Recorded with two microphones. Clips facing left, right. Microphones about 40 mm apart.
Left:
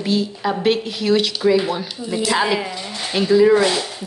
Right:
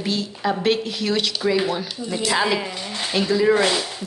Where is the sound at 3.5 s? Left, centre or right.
Centre.